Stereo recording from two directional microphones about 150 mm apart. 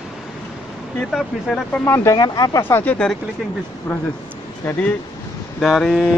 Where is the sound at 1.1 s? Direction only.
5° left (ahead or behind).